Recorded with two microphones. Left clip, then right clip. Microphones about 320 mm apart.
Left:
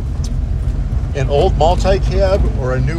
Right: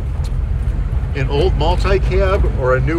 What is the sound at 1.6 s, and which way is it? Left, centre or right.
Speech, centre.